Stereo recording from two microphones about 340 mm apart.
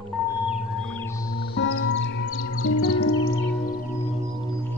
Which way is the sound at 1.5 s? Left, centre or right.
Left.